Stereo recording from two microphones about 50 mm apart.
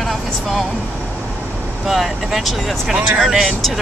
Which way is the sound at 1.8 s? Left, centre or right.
Centre.